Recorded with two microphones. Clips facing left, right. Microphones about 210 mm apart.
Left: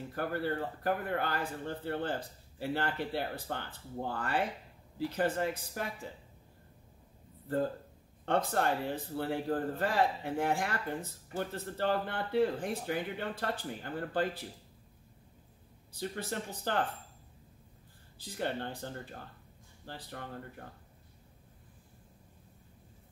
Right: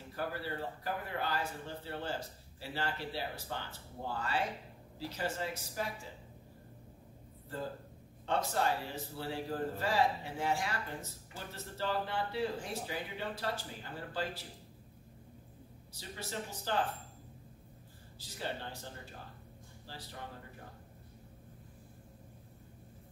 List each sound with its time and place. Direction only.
0.1 s a man's voice: 55° left (ahead or behind)
8.3 s a man's voice: 55° left (ahead or behind)
15.9 s a man's voice: 55° left (ahead or behind)
18.2 s a man's voice: 55° left (ahead or behind)
19.9 s a man's voice: 55° left (ahead or behind)